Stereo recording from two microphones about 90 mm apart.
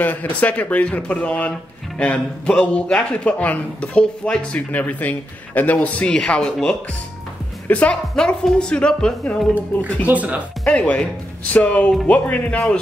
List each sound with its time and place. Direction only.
0.0 s a man's voice: 20° left (ahead or behind)
10.0 s speech: 15° right (ahead or behind)
10.6 s a man's voice: 10° left (ahead or behind)